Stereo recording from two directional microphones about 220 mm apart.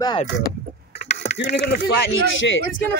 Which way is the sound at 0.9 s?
50° left (ahead or behind).